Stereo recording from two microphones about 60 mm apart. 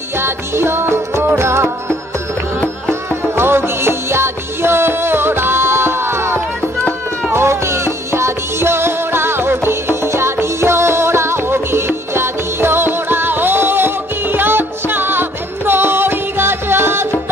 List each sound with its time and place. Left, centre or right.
0.2 s music: right
2.6 s music: centre
3.3 s music: right